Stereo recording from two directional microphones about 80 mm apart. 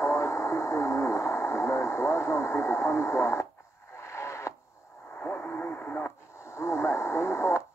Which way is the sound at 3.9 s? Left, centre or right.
Left.